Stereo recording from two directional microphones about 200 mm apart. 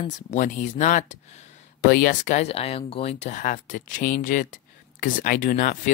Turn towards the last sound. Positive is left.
turn(degrees=45)  # may be behind; listen again after turning